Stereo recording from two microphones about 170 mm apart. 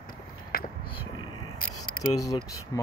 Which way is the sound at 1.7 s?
20° left (ahead or behind).